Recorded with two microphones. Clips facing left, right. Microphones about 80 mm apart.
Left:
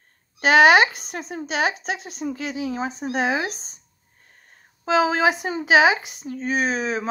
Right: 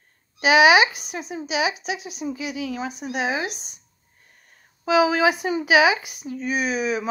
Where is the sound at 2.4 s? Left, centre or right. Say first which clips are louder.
Left 3 dB; left.